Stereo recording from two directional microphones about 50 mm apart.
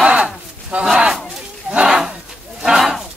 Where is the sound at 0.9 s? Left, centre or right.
Centre.